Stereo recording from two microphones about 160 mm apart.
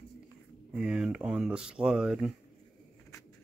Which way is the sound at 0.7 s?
5° right (ahead or behind).